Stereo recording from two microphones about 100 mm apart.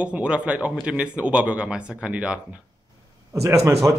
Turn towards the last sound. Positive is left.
turn(degrees=-30)  # may be behind; listen again after turning